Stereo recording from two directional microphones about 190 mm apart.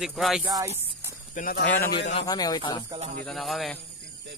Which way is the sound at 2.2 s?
20° left (ahead or behind).